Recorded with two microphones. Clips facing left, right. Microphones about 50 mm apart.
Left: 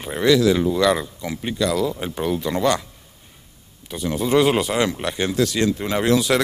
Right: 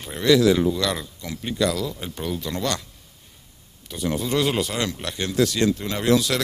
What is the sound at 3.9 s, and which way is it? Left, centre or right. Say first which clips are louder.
Speech: left 3 dB; centre.